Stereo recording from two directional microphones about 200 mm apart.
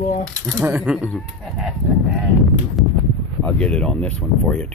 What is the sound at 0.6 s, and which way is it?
Speech, 10° right (ahead or behind).